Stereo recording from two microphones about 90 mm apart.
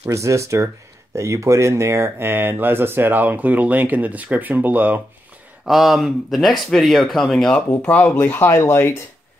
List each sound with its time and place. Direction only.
0.1 s speech: 35° right (ahead or behind)
5.7 s speech: centre (ahead or behind); by 9.0 s 30° left (ahead or behind)